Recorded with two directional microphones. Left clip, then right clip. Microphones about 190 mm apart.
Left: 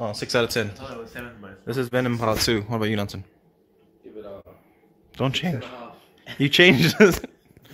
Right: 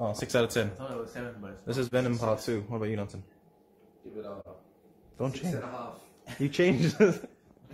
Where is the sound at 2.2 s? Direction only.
55° left (ahead or behind).